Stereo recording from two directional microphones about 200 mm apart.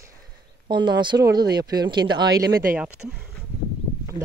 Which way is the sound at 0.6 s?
20° right (ahead or behind).